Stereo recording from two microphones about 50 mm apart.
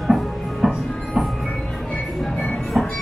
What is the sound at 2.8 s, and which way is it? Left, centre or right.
Train, centre.